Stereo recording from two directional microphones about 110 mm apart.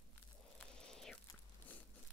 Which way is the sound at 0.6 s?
5° left (ahead or behind).